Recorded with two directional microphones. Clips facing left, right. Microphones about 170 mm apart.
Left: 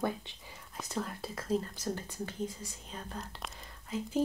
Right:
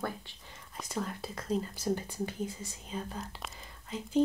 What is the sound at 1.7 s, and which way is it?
Speech, 15° right (ahead or behind).